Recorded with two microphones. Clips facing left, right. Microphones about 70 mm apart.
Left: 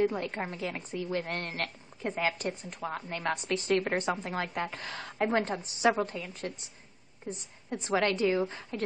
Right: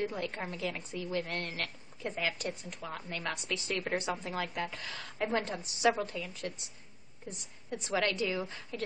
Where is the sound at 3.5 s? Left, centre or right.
Left.